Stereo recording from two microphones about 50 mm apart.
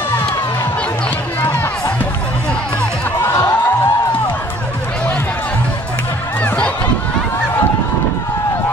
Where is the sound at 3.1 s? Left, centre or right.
Left.